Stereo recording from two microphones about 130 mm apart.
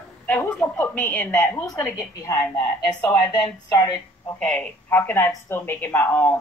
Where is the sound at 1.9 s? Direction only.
20° left (ahead or behind).